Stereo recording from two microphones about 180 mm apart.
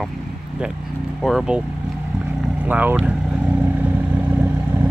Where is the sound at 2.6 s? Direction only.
10° right (ahead or behind).